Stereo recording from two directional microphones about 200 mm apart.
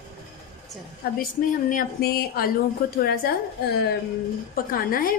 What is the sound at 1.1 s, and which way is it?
A woman's voice, 45° left (ahead or behind).